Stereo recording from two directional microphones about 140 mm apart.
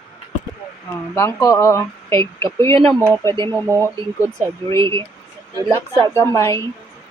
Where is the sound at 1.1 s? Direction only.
25° left (ahead or behind).